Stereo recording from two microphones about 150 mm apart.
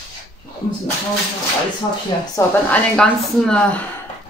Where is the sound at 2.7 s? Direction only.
5° left (ahead or behind).